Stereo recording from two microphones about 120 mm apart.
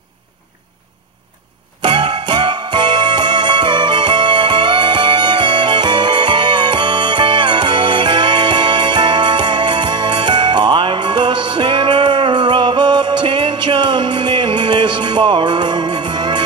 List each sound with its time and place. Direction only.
1.8 s music: 40° right (ahead or behind)